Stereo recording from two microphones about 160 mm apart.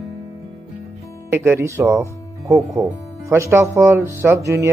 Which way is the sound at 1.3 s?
15° right (ahead or behind).